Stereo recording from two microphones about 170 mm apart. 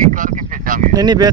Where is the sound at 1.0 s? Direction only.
25° right (ahead or behind).